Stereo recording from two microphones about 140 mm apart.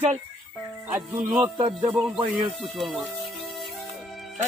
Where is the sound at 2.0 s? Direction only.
5° right (ahead or behind).